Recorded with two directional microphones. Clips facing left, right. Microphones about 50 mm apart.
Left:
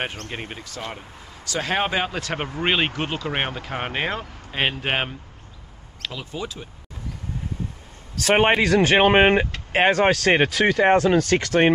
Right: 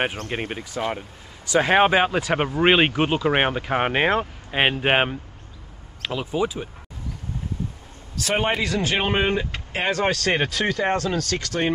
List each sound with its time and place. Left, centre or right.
0.3 s speech: centre
8.2 s speech: left
10.1 s speech: centre
10.8 s speech: left